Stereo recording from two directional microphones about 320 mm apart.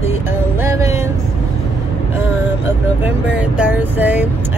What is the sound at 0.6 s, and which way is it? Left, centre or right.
Music, centre.